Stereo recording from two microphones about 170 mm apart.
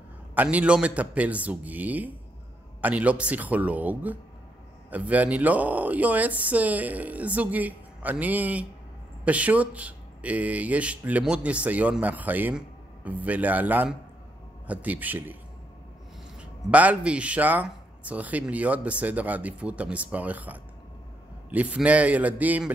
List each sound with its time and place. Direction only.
0.3 s speech: 10° right (ahead or behind)
16.3 s speech: 10° right (ahead or behind)